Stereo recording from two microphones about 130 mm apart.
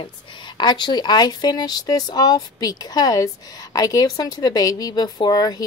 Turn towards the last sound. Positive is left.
turn(degrees=30)  # may be behind; listen again after turning